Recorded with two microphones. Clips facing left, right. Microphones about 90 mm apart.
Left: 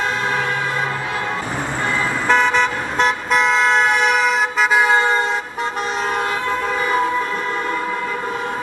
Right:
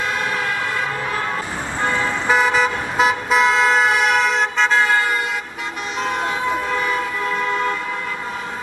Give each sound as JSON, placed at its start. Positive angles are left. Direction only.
{"t": 2.2, "sound": "toot", "side_deg": -5}
{"t": 4.7, "sound": "vehicle", "side_deg": 20}